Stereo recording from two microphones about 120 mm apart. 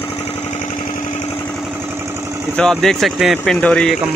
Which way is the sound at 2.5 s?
5° left (ahead or behind).